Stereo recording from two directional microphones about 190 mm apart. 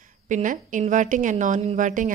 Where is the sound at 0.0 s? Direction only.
45° right (ahead or behind).